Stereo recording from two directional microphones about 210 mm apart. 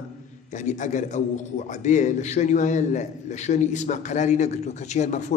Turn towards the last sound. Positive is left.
turn(degrees=35)  # may be behind; listen again after turning